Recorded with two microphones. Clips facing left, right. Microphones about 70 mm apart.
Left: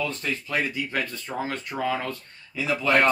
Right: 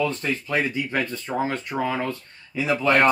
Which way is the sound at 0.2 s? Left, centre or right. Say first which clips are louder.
Right 3 dB; right.